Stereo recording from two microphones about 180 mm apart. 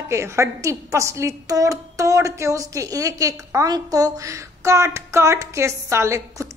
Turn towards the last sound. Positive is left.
turn(degrees=-15)  # may be behind; listen again after turning